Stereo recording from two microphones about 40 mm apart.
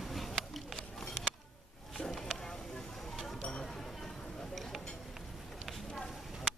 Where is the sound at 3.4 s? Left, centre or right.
Left.